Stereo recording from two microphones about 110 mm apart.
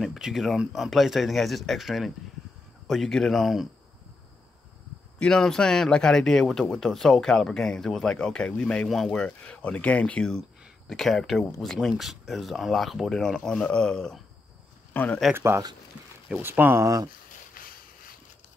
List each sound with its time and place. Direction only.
0.0 s speech: centre (ahead or behind)
5.2 s speech: 5° left (ahead or behind)
14.9 s speech: 15° left (ahead or behind)
15.3 s speech: 25° right (ahead or behind)